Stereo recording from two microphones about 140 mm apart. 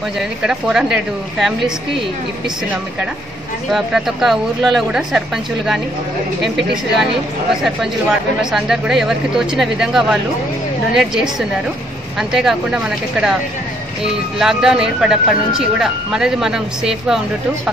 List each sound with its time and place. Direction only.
0.2 s speech: 5° right (ahead or behind)
3.7 s speech: centre (ahead or behind)
8.4 s speech: 5° right (ahead or behind)
14.4 s speech: 5° right (ahead or behind)